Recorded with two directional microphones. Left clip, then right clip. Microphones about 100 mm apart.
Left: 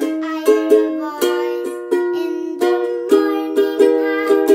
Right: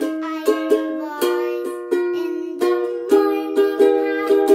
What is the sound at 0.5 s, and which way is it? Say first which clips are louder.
Music: left 6 dB; 15° left (ahead or behind).